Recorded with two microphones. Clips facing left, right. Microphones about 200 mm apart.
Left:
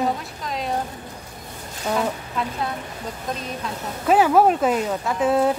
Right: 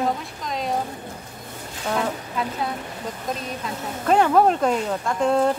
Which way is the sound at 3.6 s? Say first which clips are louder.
Even; 5° left (ahead or behind).